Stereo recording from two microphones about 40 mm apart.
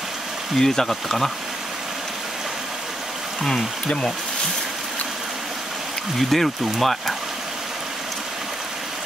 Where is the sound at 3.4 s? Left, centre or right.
Centre.